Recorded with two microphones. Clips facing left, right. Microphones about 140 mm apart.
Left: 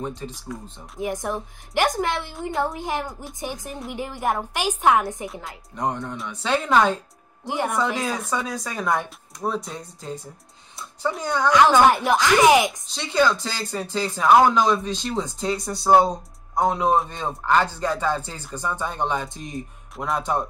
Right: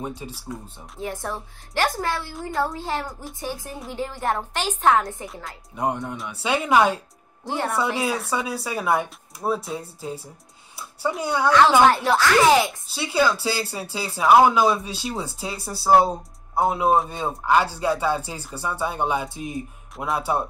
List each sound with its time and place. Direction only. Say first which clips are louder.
0.0 s speech: left 1 dB; 10° right (ahead or behind)
0.9 s a woman's voice: left 3 dB; 15° left (ahead or behind)
5.8 s speech: right 1 dB; 10° right (ahead or behind)
7.4 s a woman's voice: left 1 dB; 15° left (ahead or behind)
7.7 s speech: right 3 dB; 10° right (ahead or behind)
11.8 s a woman's voice: even; 15° left (ahead or behind)
12.8 s speech: left 1 dB; 5° right (ahead or behind)